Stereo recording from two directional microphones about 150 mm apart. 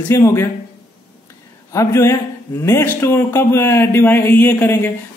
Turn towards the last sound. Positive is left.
turn(degrees=10)  # may be behind; listen again after turning